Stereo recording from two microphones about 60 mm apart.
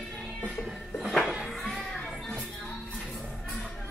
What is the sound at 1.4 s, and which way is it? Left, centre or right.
Music, centre.